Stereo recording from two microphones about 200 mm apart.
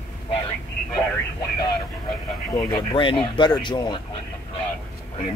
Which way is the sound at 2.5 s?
25° left (ahead or behind).